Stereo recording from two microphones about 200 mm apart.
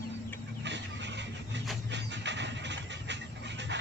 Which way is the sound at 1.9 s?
60° right (ahead or behind).